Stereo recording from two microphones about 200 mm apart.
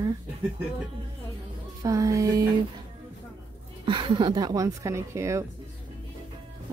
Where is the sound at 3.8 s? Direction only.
25° right (ahead or behind).